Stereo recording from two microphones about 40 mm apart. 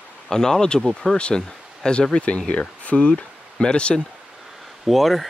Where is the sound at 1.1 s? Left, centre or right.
Left.